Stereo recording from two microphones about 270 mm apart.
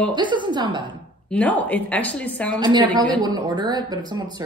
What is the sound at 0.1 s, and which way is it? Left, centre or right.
Speech, centre.